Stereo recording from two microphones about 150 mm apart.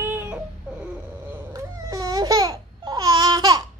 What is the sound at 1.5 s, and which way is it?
Babbling, 25° right (ahead or behind).